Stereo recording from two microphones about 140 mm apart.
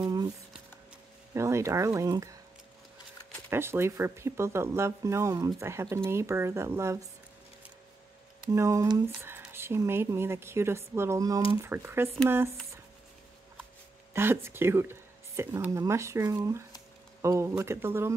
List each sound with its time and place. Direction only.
0.0 s a sound: 30° right (ahead or behind)
1.3 s speech: 20° right (ahead or behind)
3.4 s speech: 15° right (ahead or behind)
8.5 s a woman's voice: 20° right (ahead or behind)
14.1 s speech: 15° right (ahead or behind)